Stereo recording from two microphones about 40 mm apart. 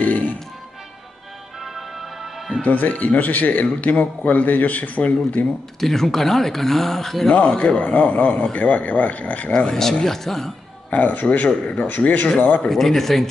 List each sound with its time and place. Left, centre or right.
0.0 s music: left
1.6 s music: centre
2.6 s a man's voice: left
5.8 s speech: centre
7.2 s a man's voice: left
9.7 s speech: centre
10.9 s speech: left
12.6 s speech: centre